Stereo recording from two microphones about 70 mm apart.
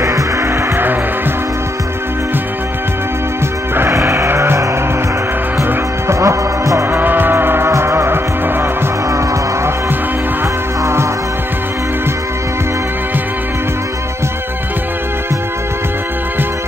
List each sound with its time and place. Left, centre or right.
3.9 s music: right
5.6 s music: right
6.9 s music: right